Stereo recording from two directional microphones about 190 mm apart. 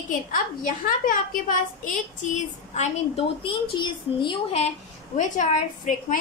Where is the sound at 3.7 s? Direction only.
25° left (ahead or behind).